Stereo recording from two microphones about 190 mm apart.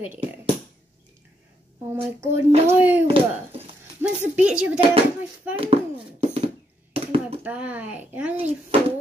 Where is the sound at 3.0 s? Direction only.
30° right (ahead or behind).